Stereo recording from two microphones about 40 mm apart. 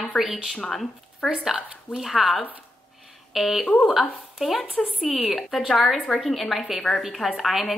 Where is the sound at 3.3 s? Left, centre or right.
Centre.